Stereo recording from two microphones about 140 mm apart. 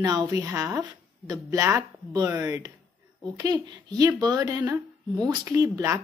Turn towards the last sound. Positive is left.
turn(degrees=-20)  # may be behind; listen again after turning